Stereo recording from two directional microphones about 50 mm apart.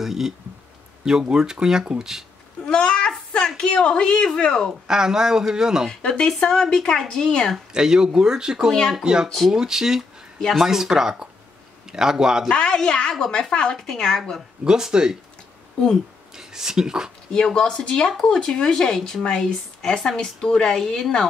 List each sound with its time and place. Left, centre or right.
0.0 s speech: centre
1.3 s speech: centre
2.6 s a sound: centre
4.8 s speech: centre
5.9 s speech: centre
7.7 s speech: centre
12.4 s speech: centre
14.6 s speech: centre
16.3 s speech: centre
17.3 s speech: centre
18.9 s speech: centre
19.2 s speech: centre